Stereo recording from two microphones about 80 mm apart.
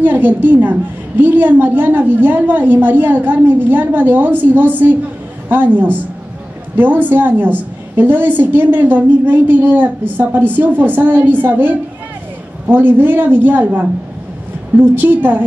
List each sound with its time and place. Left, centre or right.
0.0 s a woman's voice: right
14.8 s a woman's voice: right